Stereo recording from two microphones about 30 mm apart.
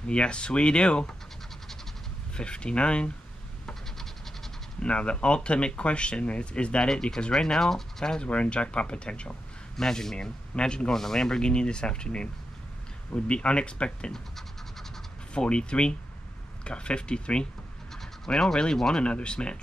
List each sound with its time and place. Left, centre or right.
0.0 s speech: left
2.3 s speech: left
4.8 s speech: left
6.9 s speech: left
8.3 s speech: left
9.8 s speech: centre
10.5 s speech: left
10.9 s speech: centre; by 14.1 s left
14.1 s scratch: centre
15.3 s speech: left
18.2 s speech: centre
18.9 s speech: left